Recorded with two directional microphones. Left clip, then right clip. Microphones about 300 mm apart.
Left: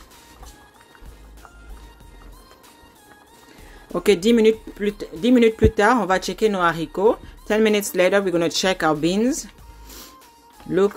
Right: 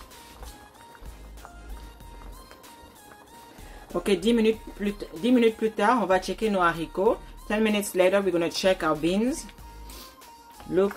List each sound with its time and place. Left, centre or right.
4.0 s speech: left